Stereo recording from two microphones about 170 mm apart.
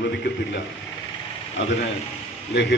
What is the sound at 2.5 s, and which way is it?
Speech, 90° left.